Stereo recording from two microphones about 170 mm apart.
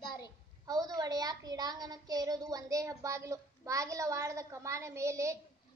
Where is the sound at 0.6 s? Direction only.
20° right (ahead or behind).